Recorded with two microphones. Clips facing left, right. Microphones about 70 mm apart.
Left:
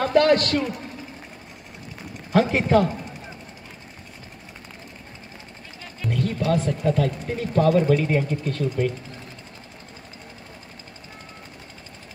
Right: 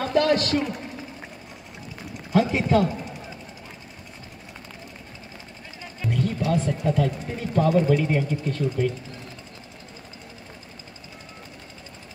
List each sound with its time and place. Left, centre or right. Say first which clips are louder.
0.0 s a sound: left 3 dB; left
2.3 s speech: left 2 dB; left
6.0 s music: left 1 dB; left
6.8 s speech: left 1 dB; left